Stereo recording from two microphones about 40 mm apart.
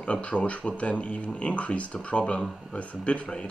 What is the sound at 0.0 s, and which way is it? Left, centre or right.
Speech, left.